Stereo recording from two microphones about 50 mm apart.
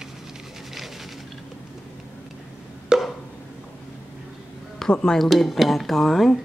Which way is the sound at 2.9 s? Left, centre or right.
Centre.